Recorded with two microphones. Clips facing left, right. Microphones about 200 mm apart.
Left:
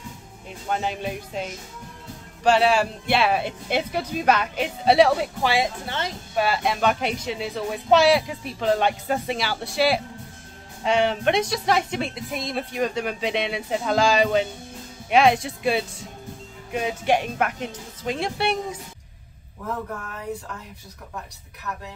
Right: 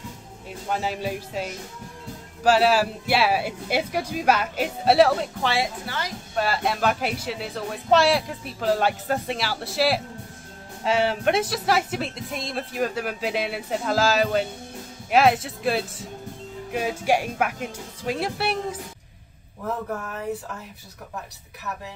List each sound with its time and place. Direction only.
0.7 s speech: 5° right (ahead or behind)
5.5 s speech: 20° left (ahead or behind)
6.3 s speech: centre (ahead or behind)